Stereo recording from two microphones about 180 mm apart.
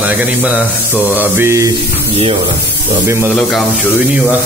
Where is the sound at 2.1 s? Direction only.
30° right (ahead or behind).